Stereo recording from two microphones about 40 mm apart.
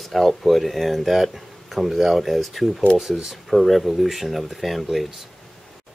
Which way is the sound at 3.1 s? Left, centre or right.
Centre.